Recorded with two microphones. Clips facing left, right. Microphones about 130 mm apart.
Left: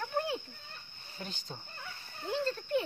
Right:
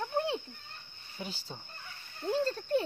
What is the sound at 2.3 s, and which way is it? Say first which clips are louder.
Speech: right 2 dB; 40° right (ahead or behind).